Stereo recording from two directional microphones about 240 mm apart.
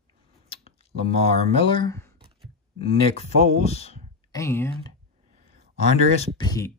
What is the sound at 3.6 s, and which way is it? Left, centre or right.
Speech, left.